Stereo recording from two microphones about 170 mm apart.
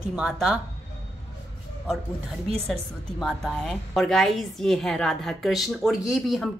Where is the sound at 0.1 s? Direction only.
5° right (ahead or behind).